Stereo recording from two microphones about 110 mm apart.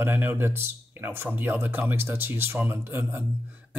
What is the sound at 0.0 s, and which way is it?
A man's voice, 20° right (ahead or behind).